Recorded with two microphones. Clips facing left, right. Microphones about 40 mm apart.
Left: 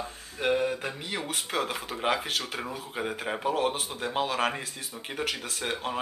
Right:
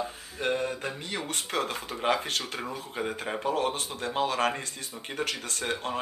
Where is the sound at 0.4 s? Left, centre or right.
Centre.